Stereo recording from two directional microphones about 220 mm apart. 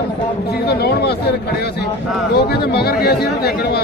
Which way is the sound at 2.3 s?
45° left (ahead or behind).